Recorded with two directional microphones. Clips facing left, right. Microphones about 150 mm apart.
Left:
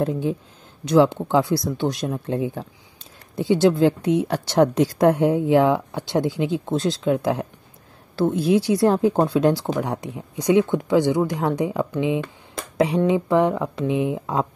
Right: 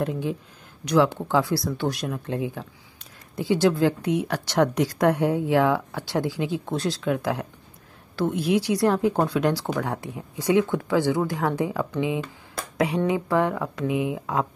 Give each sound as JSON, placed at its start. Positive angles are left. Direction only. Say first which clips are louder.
{"t": 0.0, "sound": "speech", "louder": "left 4 dB", "side_deg": 30}